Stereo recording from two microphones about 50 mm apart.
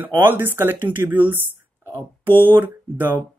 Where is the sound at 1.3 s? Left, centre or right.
Right.